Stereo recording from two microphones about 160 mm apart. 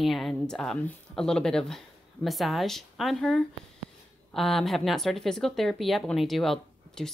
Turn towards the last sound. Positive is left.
turn(degrees=0)  # may be behind; listen again after turning